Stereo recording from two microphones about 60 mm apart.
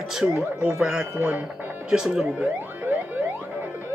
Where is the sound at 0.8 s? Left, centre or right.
Centre.